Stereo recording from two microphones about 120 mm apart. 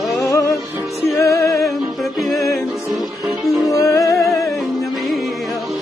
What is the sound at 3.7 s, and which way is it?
Music, 25° left (ahead or behind).